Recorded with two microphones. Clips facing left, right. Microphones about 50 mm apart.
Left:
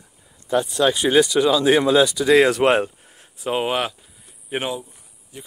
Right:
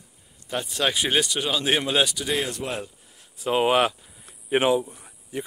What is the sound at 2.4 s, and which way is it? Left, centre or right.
Speech, left.